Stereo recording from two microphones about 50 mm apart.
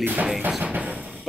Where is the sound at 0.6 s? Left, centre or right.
Right.